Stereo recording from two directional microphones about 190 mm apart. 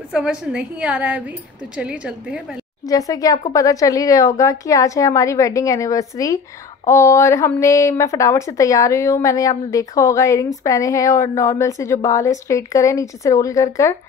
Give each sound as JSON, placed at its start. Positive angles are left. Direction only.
{"t": 0.1, "sound": "a woman's voice", "side_deg": -5}
{"t": 2.9, "sound": "speech", "side_deg": 20}